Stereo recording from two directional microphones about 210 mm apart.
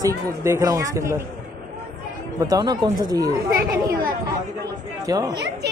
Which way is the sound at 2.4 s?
20° right (ahead or behind).